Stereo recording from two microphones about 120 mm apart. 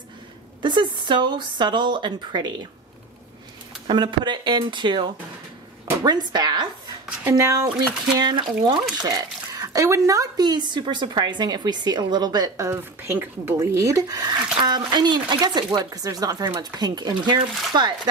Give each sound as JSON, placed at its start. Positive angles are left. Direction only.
{"t": 0.6, "sound": "speech", "side_deg": -40}
{"t": 3.8, "sound": "speech", "side_deg": -40}
{"t": 7.2, "sound": "speech", "side_deg": -25}
{"t": 8.2, "sound": "speech", "side_deg": -35}